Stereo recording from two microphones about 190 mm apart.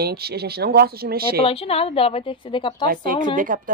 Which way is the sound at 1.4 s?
30° left (ahead or behind).